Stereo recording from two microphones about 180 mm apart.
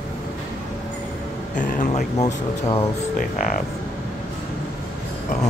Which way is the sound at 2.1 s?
20° left (ahead or behind).